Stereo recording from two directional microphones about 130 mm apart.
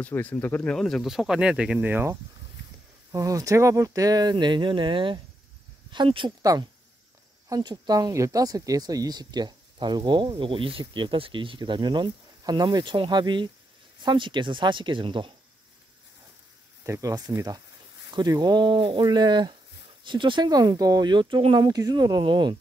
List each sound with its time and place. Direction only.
0.0 s speech: 10° left (ahead or behind)
0.7 s speech: 5° left (ahead or behind); by 2.1 s 15° right (ahead or behind)
3.1 s speech: 25° right (ahead or behind)
6.4 s speech: 25° right (ahead or behind)
16.8 s speech: 25° right (ahead or behind)